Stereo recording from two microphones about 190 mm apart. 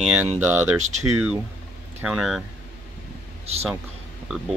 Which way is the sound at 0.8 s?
40° right (ahead or behind).